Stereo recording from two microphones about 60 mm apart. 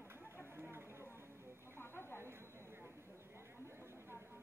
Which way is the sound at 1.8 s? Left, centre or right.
Left.